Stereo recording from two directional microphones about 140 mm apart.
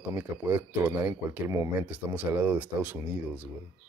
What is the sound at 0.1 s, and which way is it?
Speech, 15° right (ahead or behind).